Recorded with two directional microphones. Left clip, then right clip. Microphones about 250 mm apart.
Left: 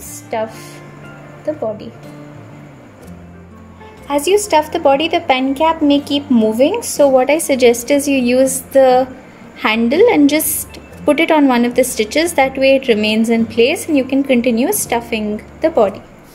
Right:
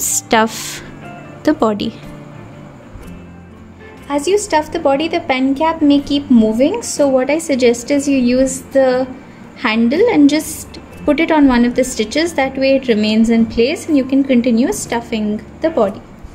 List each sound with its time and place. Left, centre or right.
1.4 s speech: right
4.1 s a woman's voice: centre